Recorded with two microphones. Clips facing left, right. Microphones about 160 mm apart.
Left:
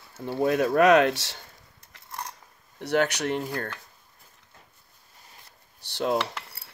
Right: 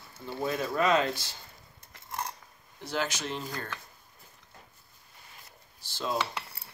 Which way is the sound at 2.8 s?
65° left (ahead or behind).